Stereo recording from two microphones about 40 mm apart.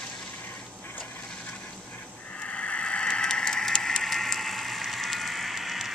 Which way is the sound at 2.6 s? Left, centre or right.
Left.